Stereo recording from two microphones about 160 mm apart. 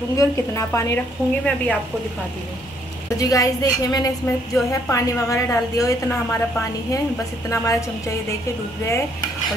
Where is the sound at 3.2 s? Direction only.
20° left (ahead or behind).